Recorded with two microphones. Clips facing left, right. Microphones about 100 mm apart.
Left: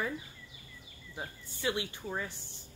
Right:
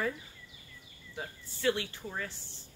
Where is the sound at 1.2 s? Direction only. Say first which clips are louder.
Right 1 dB; 15° left (ahead or behind).